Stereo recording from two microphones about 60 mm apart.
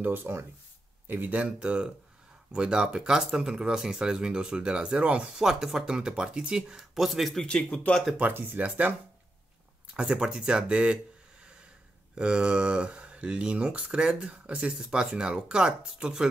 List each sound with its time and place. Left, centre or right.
0.0 s speech: right
5.5 s speech: centre
7.4 s speech: centre
8.2 s speech: right
9.9 s speech: centre
12.2 s speech: centre